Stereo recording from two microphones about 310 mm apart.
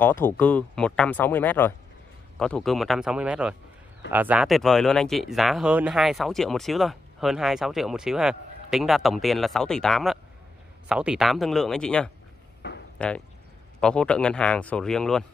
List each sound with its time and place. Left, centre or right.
0.0 s speech: centre
12.6 s a sound: left
13.0 s speech: centre